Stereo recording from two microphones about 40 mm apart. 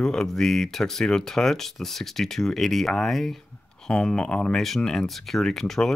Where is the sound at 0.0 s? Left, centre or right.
Centre.